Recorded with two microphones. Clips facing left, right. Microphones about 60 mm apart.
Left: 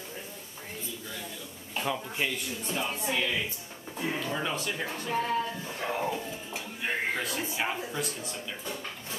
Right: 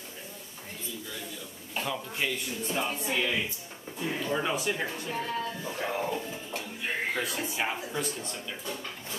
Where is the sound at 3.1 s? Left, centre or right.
Centre.